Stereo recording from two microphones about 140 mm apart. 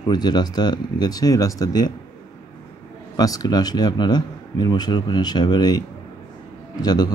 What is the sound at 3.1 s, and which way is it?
A man's voice, 25° left (ahead or behind).